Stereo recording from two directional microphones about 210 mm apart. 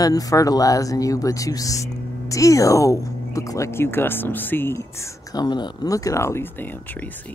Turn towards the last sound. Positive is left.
turn(degrees=10)  # may be behind; listen again after turning